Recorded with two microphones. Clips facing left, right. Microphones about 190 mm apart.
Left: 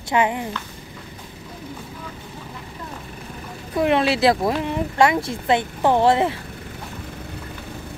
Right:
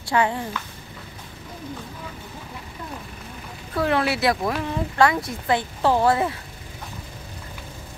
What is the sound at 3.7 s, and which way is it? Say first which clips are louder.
Speech: left 3 dB; 20° left (ahead or behind).